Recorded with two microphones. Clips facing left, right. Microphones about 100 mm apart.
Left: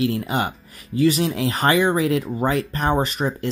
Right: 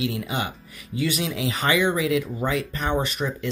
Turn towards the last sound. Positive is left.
turn(degrees=40)  # may be behind; listen again after turning